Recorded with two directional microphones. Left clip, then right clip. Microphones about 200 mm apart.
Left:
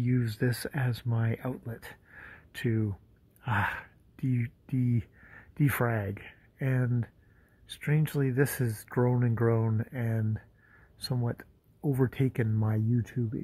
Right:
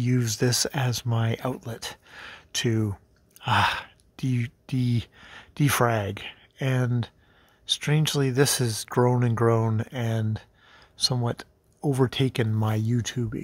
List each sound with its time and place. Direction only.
0.0 s speech: 30° right (ahead or behind)
13.0 s speech: 15° right (ahead or behind)